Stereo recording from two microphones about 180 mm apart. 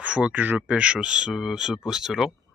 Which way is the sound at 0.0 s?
5° right (ahead or behind).